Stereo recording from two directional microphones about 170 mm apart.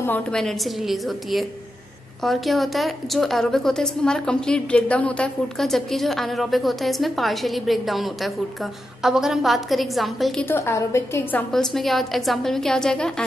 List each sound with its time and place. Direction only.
0.0 s a woman's voice: 5° left (ahead or behind)
10.5 s a woman's voice: 15° left (ahead or behind)
11.5 s a woman's voice: centre (ahead or behind)